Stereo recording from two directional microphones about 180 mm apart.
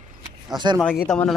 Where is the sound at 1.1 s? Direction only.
5° left (ahead or behind).